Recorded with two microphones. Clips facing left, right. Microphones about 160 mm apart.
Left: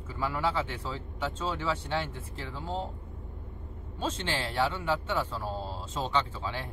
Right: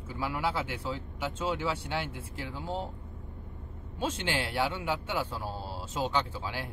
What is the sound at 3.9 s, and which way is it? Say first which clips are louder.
A man's voice: right 1 dB; 10° right (ahead or behind).